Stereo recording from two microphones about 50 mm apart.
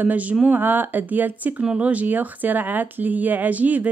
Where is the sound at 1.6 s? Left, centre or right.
Right.